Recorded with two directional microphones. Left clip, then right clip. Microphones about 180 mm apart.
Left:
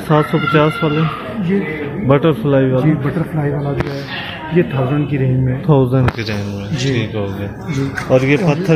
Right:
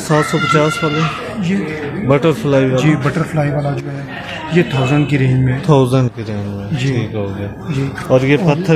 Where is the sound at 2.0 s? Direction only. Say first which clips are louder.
Even; 10° right (ahead or behind).